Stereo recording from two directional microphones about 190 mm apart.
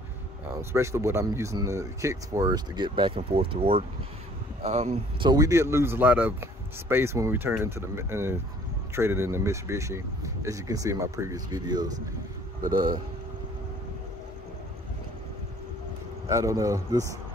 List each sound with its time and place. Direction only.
0.6 s speech: 15° right (ahead or behind); by 5.3 s 35° right (ahead or behind)
5.3 s speech: 15° right (ahead or behind)
16.3 s speech: 15° right (ahead or behind)